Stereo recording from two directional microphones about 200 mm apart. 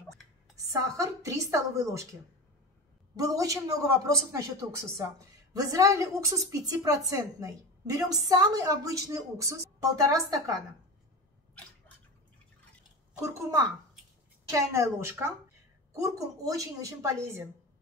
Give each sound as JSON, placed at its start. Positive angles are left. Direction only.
{"t": 0.7, "sound": "speech", "side_deg": -15}
{"t": 3.2, "sound": "speech", "side_deg": -15}
{"t": 13.2, "sound": "speech", "side_deg": -15}